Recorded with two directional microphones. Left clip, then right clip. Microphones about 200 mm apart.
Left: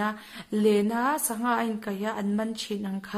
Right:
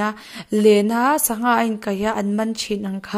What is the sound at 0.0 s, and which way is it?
Speech, 35° right (ahead or behind).